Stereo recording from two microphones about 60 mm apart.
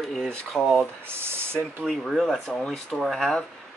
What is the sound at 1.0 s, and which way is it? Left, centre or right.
Speech, right.